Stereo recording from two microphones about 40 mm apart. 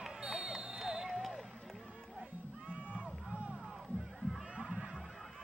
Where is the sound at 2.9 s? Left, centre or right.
Right.